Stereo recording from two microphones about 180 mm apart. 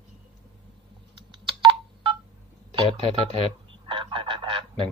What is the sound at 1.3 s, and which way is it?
Telephone dialing, 25° right (ahead or behind).